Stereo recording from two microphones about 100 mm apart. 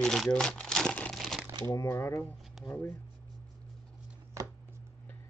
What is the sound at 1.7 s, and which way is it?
Speech, 30° left (ahead or behind).